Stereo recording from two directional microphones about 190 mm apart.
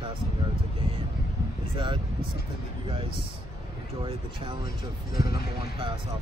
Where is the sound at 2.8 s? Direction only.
30° right (ahead or behind).